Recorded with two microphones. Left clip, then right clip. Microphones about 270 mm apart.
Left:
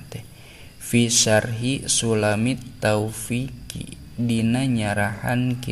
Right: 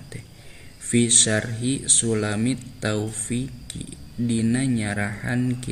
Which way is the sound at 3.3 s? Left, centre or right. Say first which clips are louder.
Left 1 dB; left.